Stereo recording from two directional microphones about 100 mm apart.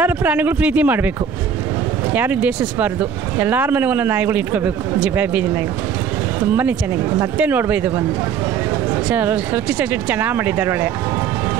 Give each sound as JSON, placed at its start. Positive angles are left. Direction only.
{"t": 0.0, "sound": "speech", "side_deg": -20}
{"t": 2.1, "sound": "speech", "side_deg": -15}
{"t": 9.1, "sound": "speech", "side_deg": -15}